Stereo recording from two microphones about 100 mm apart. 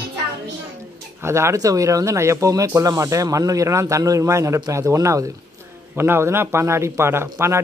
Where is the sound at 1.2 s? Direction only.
30° right (ahead or behind).